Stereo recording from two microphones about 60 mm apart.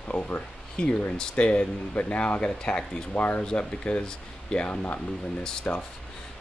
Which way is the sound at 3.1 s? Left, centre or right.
Left.